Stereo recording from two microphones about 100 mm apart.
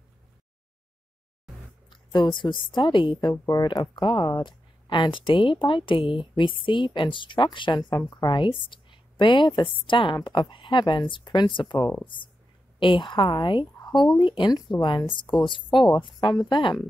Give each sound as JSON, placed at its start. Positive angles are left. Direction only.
{"t": 1.9, "sound": "a woman's voice", "side_deg": 55}